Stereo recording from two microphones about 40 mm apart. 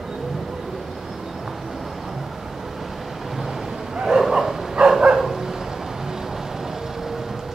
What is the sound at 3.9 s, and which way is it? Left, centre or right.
Bow-wow, centre.